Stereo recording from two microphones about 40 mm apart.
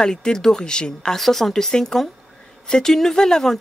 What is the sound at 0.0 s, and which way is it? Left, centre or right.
Speech, centre.